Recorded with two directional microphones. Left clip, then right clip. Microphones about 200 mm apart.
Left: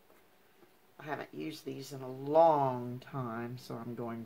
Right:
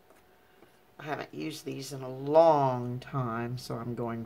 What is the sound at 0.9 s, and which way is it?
Speech, 5° right (ahead or behind).